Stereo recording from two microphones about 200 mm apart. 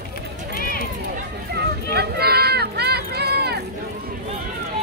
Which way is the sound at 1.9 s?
55° right (ahead or behind).